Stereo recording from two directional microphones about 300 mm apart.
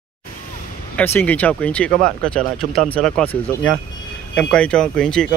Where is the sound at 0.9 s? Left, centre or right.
Centre.